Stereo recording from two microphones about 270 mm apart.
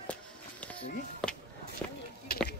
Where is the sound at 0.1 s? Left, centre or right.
Centre.